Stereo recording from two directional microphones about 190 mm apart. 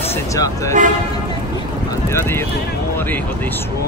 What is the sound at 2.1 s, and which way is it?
Speech, 10° left (ahead or behind).